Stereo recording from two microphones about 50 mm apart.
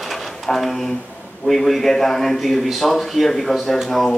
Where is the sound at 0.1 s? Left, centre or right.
Centre.